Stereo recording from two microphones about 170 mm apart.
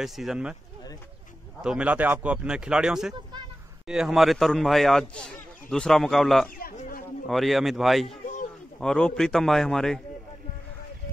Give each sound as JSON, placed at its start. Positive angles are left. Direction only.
{"t": 0.0, "sound": "a man's voice", "side_deg": 0}
{"t": 1.6, "sound": "a man's voice", "side_deg": -5}
{"t": 6.6, "sound": "a sound", "side_deg": 55}
{"t": 7.2, "sound": "a man's voice", "side_deg": 0}